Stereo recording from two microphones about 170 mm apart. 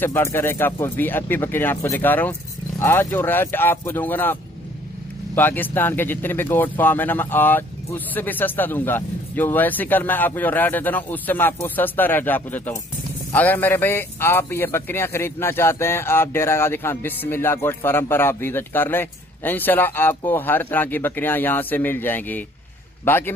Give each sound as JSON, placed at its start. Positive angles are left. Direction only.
{"t": 0.0, "sound": "a man's voice", "side_deg": 15}